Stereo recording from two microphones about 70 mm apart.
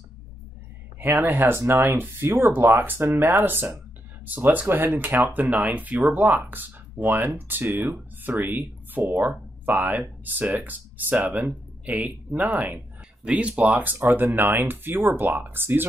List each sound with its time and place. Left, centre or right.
1.0 s speech: right
1.6 s speech: right
4.3 s speech: right